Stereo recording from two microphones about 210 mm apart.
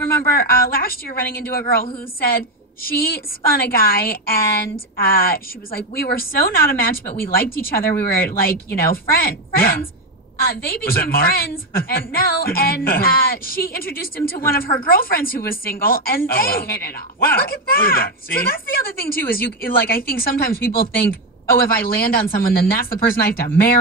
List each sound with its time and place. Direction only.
0.4 s a woman's voice: 45° left (ahead or behind)